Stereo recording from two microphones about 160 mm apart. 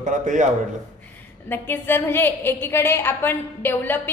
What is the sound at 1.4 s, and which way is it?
A woman's voice, 15° left (ahead or behind).